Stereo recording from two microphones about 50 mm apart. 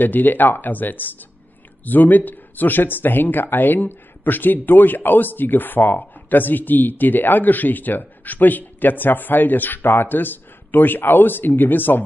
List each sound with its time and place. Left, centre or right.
0.0 s speech: left